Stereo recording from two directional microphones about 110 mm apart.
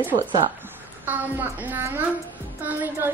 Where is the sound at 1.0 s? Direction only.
15° right (ahead or behind).